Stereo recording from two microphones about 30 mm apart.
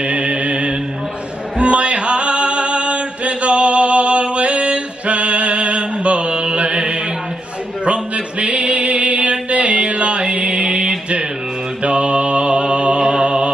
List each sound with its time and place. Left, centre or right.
0.0 s mantra: right
1.6 s music: right
7.8 s a sound: right
11.8 s music: right